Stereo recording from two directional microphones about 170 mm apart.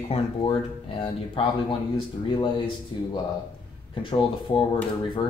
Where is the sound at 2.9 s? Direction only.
30° left (ahead or behind).